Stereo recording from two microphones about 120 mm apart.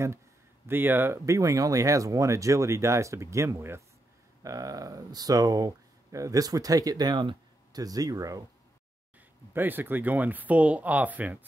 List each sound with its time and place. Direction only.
0.7 s speech: 15° right (ahead or behind)
9.5 s speech: 15° right (ahead or behind)